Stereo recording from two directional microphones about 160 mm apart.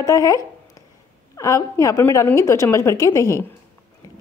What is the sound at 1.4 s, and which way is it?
A woman's voice, 20° left (ahead or behind).